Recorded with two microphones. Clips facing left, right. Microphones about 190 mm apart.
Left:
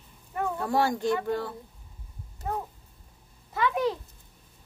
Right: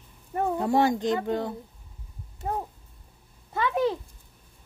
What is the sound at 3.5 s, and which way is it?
Speech, 25° right (ahead or behind).